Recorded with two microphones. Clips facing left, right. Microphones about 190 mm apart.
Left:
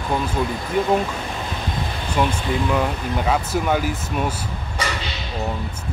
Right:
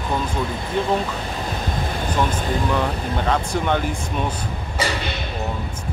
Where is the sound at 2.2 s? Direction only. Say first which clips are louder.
Left 2 dB; 10° left (ahead or behind).